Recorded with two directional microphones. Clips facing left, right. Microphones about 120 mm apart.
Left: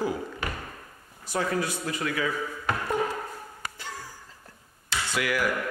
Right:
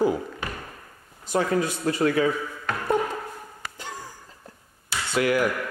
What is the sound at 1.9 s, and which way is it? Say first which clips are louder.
Speech: right 8 dB; 35° right (ahead or behind).